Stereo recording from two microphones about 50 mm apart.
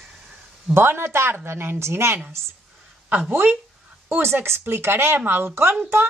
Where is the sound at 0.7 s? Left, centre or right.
Right.